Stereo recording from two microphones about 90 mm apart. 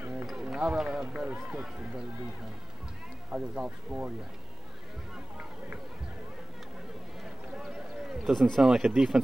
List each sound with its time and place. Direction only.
0.0 s a sound: 20° right (ahead or behind)
0.3 s speech: 5° right (ahead or behind)
3.3 s speech: 10° right (ahead or behind)
7.5 s speech: 5° right (ahead or behind)